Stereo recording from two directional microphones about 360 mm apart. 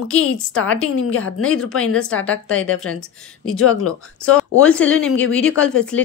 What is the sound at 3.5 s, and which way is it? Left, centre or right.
Speech, left.